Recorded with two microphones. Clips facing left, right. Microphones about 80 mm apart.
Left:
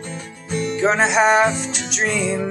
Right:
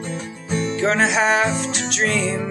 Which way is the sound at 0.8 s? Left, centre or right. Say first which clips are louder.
Left 3 dB; centre.